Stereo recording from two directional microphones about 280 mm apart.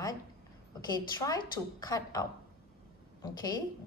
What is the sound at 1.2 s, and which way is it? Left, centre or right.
A woman's voice, centre.